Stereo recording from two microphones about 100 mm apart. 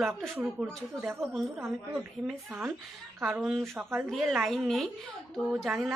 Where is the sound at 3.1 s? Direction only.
25° right (ahead or behind).